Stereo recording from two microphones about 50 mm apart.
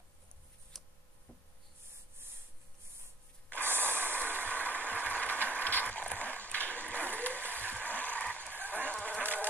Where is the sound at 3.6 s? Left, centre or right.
Right.